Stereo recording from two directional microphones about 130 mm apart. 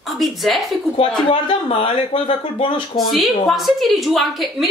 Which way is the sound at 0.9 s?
45° left (ahead or behind).